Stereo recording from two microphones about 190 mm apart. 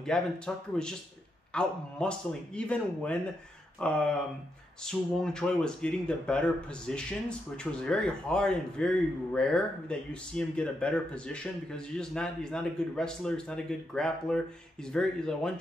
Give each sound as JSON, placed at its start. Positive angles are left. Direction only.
{"t": 0.0, "sound": "speech", "side_deg": 5}